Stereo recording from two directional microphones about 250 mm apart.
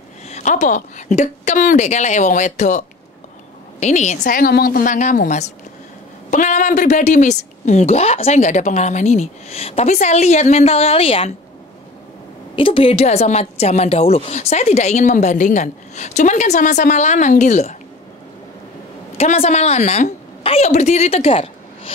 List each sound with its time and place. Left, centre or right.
0.3 s a woman's voice: left
3.8 s a woman's voice: left
12.5 s a woman's voice: left
19.1 s a woman's voice: left